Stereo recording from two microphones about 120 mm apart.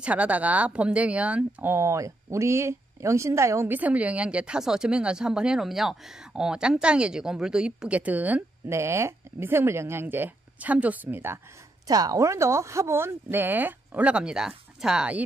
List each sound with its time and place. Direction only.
0.0 s speech: 10° right (ahead or behind)
11.9 s speech: 30° right (ahead or behind); by 15.2 s 10° right (ahead or behind)